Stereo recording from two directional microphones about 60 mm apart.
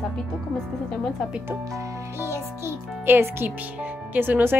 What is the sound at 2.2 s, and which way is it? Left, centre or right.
Speech, right.